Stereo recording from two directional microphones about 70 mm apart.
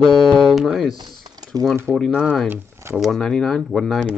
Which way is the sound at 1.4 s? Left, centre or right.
Right.